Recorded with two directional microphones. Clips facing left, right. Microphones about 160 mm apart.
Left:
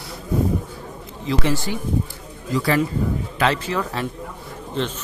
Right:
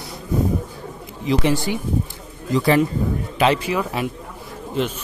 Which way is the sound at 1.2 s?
15° right (ahead or behind).